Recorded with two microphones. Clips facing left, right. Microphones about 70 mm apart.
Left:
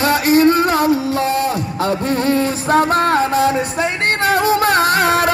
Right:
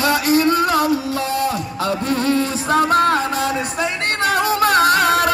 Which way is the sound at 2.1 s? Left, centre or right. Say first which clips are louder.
Even; left.